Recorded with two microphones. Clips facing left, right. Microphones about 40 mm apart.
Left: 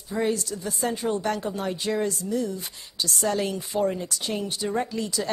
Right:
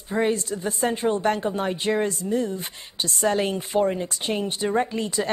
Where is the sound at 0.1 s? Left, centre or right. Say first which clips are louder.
Right 3 dB; right.